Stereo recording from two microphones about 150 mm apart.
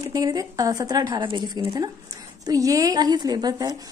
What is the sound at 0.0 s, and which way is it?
Speech, 25° right (ahead or behind).